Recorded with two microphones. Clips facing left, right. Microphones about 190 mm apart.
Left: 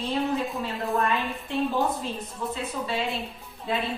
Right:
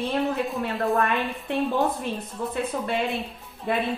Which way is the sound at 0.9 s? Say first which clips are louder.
Right 2 dB; 60° right (ahead or behind).